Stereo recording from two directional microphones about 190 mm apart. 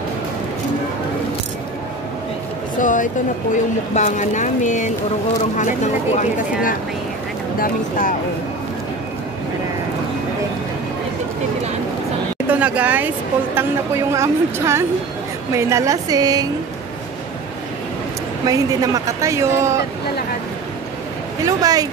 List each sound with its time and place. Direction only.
2.8 s speech: 45° left (ahead or behind)
6.3 s speech: 45° left (ahead or behind)
12.4 s a woman's voice: 10° right (ahead or behind)
18.4 s speech: 20° right (ahead or behind)
21.5 s a woman's voice: 20° right (ahead or behind)